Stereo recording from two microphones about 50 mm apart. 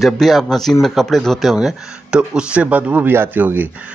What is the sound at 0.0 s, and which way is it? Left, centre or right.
Speech, centre.